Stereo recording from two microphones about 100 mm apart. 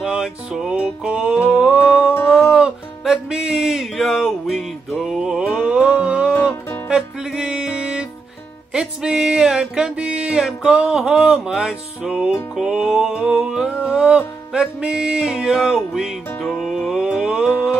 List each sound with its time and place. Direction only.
0.0 s music: 5° right (ahead or behind)
1.5 s a sound: 10° right (ahead or behind)
1.8 s music: 20° left (ahead or behind)
2.5 s music: 5° right (ahead or behind)